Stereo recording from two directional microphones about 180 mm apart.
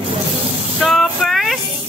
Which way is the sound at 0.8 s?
Centre (ahead or behind).